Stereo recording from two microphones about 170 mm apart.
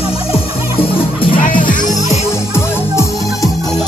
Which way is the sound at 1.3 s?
55° left (ahead or behind).